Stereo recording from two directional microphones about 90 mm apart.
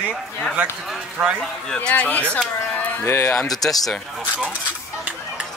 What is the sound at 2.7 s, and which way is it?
Music, 15° left (ahead or behind).